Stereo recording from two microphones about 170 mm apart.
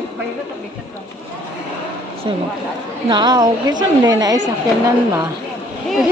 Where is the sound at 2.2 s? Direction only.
25° right (ahead or behind).